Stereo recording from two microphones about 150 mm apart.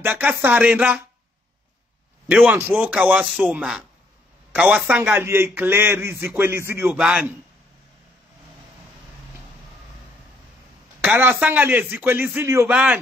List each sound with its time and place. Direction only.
0.0 s a man's voice: 10° right (ahead or behind)
2.2 s a man's voice: 15° right (ahead or behind)
11.0 s a man's voice: 10° right (ahead or behind)